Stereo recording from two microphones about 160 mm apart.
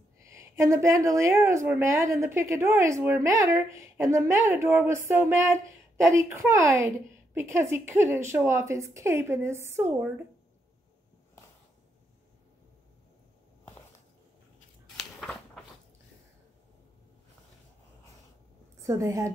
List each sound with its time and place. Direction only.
0.2 s a woman's voice: 20° right (ahead or behind)
15.0 s a sound: 5° left (ahead or behind)
18.8 s a woman's voice: 20° right (ahead or behind)